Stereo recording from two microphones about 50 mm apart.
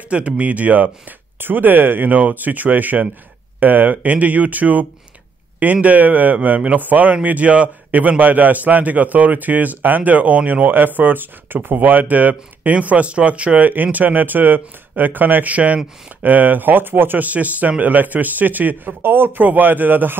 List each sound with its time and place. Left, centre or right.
0.1 s speech: right